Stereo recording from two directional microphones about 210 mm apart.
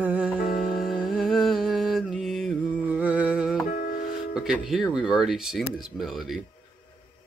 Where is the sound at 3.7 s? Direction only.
45° left (ahead or behind).